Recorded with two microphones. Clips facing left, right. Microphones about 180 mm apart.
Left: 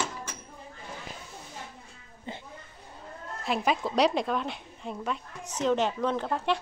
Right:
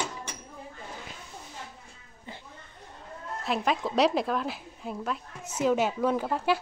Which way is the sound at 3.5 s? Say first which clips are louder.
Even; centre (ahead or behind).